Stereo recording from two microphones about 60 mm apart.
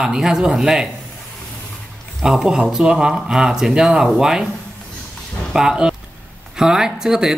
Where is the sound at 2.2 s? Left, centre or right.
Centre.